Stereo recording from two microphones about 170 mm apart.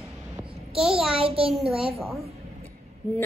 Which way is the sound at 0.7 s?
5° right (ahead or behind).